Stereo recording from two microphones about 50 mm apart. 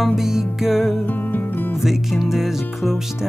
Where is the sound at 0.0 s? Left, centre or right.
Centre.